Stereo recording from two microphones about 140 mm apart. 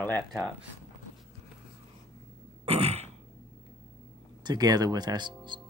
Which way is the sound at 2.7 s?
45° right (ahead or behind).